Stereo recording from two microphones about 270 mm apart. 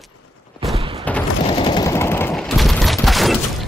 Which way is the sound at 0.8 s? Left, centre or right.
Centre.